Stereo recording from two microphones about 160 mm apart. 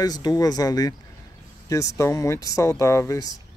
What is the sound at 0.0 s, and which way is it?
Speech, 25° left (ahead or behind).